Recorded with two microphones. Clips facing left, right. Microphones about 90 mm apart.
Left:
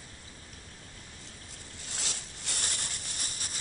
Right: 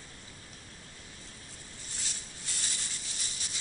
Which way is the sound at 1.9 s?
70° left (ahead or behind).